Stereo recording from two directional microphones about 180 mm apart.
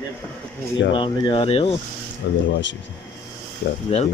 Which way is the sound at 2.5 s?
90° left.